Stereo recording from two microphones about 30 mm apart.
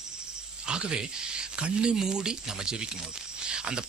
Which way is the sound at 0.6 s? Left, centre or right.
Right.